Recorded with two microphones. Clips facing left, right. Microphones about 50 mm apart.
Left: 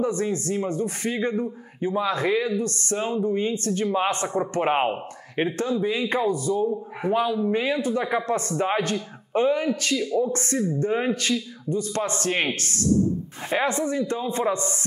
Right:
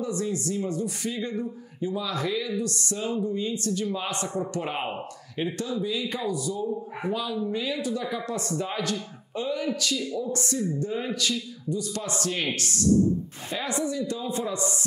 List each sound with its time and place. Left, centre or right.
0.0 s speech: left